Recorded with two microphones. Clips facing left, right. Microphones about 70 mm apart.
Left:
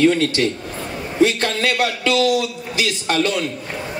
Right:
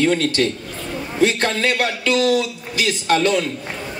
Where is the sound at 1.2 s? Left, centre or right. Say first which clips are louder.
Left 1 dB; right.